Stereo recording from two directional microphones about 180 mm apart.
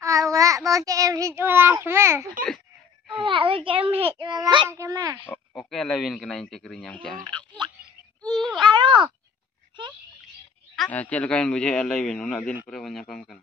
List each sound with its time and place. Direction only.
0.0 s a child's voice: 15° right (ahead or behind)
3.2 s a child's voice: 30° right (ahead or behind)
5.3 s a man's voice: 5° left (ahead or behind)
8.5 s a sound: 25° right (ahead or behind)
10.8 s a man's voice: 10° left (ahead or behind)